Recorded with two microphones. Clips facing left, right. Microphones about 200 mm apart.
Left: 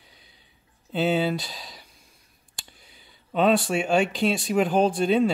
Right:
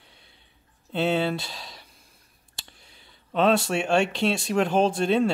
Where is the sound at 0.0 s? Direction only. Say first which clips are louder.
Even; centre (ahead or behind).